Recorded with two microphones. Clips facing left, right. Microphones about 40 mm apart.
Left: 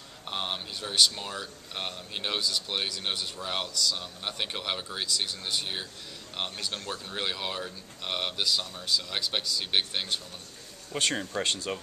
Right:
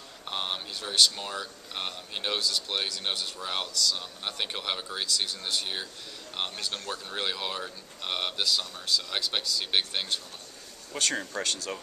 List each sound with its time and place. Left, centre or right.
0.2 s a sound: centre
0.7 s speech: centre
6.3 s speech: centre
10.9 s speech: centre